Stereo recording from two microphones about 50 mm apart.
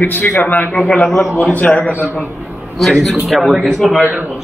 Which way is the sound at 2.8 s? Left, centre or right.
Centre.